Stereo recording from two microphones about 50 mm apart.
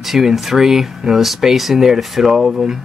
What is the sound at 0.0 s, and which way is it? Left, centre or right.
Speech, centre.